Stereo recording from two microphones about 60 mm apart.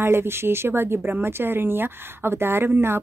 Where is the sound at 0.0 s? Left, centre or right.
Right.